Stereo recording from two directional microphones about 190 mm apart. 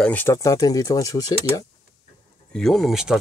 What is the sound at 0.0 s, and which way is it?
Speech, 10° left (ahead or behind).